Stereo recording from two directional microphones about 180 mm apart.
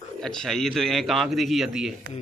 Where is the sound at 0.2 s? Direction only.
5° left (ahead or behind).